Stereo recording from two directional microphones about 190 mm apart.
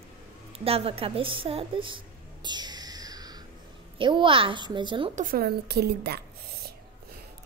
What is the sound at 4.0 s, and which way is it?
A child's voice, 25° right (ahead or behind).